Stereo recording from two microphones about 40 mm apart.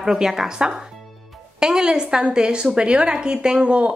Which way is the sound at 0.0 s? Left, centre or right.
Centre.